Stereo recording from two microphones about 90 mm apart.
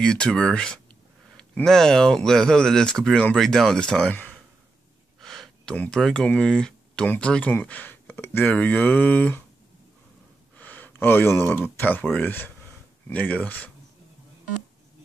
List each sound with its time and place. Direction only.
0.0 s speech: 5° left (ahead or behind)
5.2 s a sound: 5° left (ahead or behind)
5.9 s speech: 5° left (ahead or behind)
10.6 s speech: 20° left (ahead or behind)